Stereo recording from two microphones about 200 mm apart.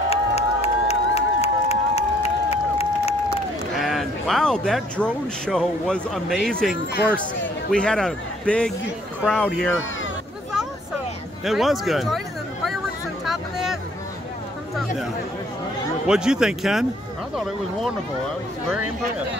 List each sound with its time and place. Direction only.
0.1 s crowd: 30° left (ahead or behind)
3.7 s speech: centre (ahead or behind)
7.7 s speech: 5° left (ahead or behind)
11.4 s speech: centre (ahead or behind)
13.2 s music: centre (ahead or behind)
16.1 s speech: 5° right (ahead or behind)